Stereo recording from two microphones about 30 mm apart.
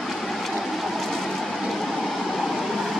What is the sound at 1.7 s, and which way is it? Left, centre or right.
Vehicle, centre.